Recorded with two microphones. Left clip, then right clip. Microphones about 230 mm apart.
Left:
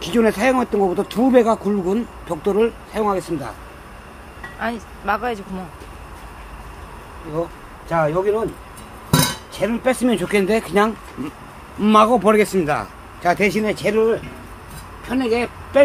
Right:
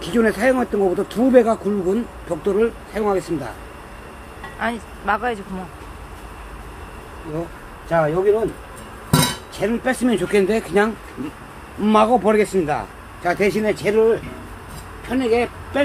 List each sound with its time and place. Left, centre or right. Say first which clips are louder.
0.0 s speech: left 1 dB; left
4.6 s speech: right 1 dB; centre
7.9 s speech: right 1 dB; centre
9.6 s speech: left 2 dB; left